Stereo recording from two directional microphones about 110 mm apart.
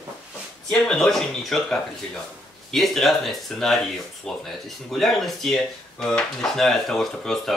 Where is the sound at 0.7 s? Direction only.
5° left (ahead or behind).